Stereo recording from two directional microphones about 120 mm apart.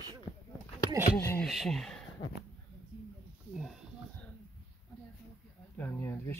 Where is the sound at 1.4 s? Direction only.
Centre (ahead or behind).